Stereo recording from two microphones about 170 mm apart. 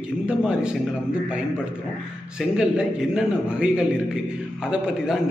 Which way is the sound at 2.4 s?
5° right (ahead or behind).